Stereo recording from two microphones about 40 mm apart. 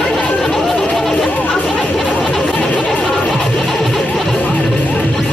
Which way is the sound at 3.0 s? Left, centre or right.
Centre.